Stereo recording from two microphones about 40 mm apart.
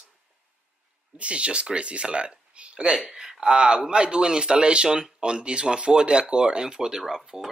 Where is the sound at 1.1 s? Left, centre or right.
Right.